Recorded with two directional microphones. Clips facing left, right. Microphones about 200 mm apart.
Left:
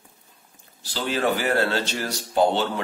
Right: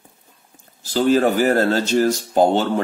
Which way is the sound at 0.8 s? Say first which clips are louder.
Right 8 dB; 45° right (ahead or behind).